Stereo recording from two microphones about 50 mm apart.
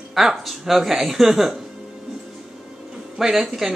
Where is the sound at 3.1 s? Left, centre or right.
Centre.